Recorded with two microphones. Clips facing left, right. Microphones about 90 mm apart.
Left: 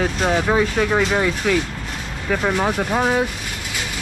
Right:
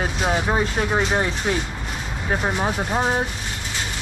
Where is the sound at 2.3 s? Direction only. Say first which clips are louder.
Left 3 dB; 90° left.